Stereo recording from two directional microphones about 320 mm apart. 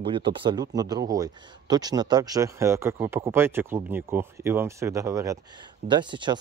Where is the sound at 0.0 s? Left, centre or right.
Centre.